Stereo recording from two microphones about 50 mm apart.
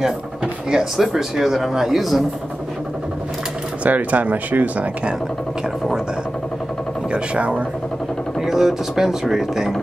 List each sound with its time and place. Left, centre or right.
0.9 s speech: centre
3.8 s speech: right
7.1 s speech: right
8.4 s speech: centre